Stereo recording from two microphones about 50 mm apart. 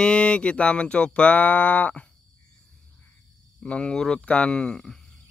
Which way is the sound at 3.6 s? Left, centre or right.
Centre.